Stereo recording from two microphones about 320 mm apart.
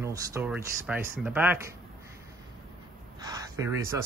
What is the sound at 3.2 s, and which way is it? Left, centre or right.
Speech, centre.